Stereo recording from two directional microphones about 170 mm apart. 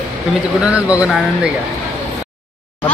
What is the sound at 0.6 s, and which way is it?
Speech, 5° right (ahead or behind).